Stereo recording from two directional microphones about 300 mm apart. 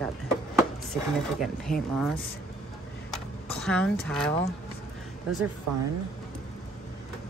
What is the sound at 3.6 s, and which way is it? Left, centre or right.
Speech, centre.